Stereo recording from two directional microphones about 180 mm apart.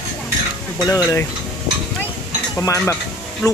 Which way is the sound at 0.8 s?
20° left (ahead or behind).